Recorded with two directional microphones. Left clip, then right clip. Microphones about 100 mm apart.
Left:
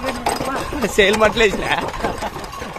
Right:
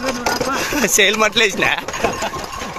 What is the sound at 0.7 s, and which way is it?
Speech, 35° right (ahead or behind).